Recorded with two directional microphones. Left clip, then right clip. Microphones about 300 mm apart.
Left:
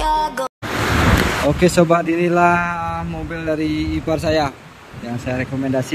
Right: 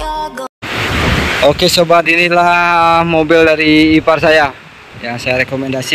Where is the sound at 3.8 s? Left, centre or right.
Centre.